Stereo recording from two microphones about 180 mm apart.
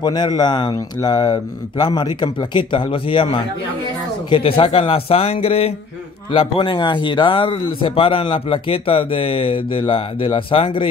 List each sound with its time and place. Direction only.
0.0 s a man's voice: 25° left (ahead or behind)